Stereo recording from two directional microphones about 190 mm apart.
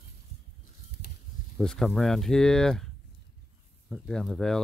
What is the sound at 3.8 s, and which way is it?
Speech, centre (ahead or behind).